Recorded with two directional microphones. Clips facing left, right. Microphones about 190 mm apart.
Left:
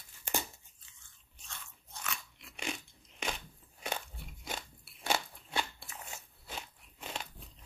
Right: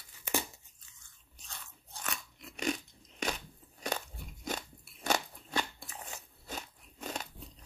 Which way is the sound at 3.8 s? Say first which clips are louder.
Right 3 dB; 40° right (ahead or behind).